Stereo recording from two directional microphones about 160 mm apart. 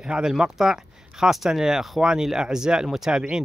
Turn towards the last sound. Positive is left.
turn(degrees=-5)  # may be behind; listen again after turning